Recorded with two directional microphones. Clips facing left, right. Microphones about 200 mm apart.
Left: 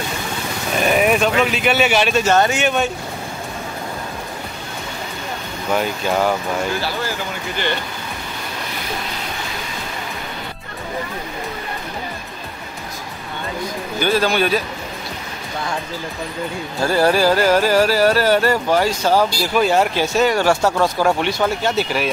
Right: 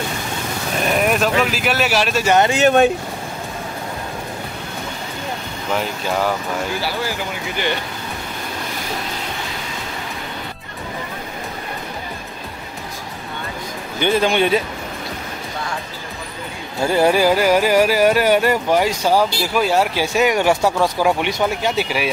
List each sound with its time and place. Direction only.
0.9 s speech: centre (ahead or behind)
2.2 s carnatic music: 15° right (ahead or behind)
5.8 s speech: centre (ahead or behind)
6.8 s carnatic music: 10° right (ahead or behind)
13.9 s speech: 20° right (ahead or behind)
16.8 s carnatic music: 15° right (ahead or behind)